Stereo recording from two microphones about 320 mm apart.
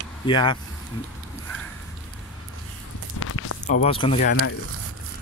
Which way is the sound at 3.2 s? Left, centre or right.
Left.